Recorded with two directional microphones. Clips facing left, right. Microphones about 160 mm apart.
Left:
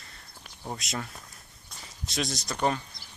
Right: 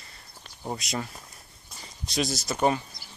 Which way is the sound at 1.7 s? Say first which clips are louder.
Right 1 dB; centre (ahead or behind).